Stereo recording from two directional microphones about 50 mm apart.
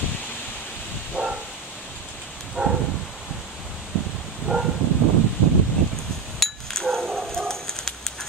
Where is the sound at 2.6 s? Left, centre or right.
Centre.